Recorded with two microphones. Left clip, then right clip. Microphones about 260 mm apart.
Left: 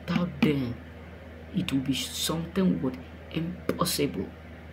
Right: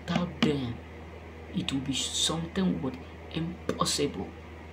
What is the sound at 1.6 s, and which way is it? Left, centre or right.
A woman's voice, centre.